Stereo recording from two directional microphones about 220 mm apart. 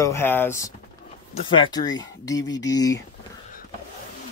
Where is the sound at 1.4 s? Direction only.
20° left (ahead or behind).